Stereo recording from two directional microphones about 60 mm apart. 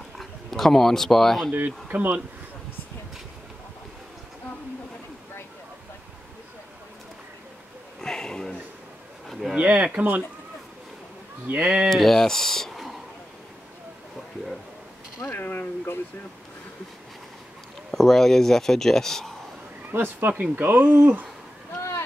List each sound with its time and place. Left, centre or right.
0.2 s speech: centre
1.9 s speech: right
8.0 s a sound: centre
9.3 s a sound: centre
9.6 s speech: right
11.4 s speech: right
11.9 s speech: centre
15.3 s a sound: left
17.9 s speech: centre
19.9 s speech: right